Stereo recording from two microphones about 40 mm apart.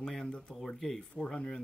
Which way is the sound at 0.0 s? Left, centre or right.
Centre.